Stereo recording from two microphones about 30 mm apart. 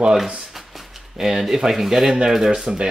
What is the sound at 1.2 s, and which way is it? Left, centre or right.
Speech, centre.